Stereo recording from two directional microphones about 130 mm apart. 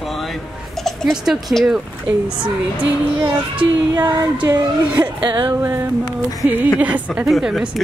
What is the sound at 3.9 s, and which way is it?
Speech, 25° right (ahead or behind).